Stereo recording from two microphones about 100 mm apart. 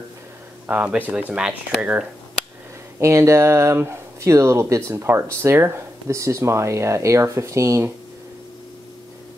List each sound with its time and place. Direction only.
0.7 s speech: 15° right (ahead or behind)
3.0 s speech: 30° right (ahead or behind)